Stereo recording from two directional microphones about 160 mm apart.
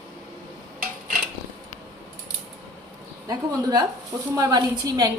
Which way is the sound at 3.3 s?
25° right (ahead or behind).